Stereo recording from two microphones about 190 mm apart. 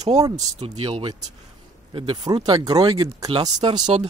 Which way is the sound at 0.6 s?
35° right (ahead or behind).